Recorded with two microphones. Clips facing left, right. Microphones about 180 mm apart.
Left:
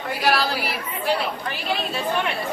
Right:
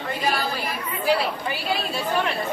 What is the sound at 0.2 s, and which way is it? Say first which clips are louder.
Chatter: left 4 dB; 80° left.